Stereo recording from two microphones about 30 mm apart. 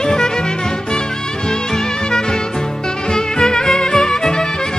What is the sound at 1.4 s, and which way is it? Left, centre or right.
Music, centre.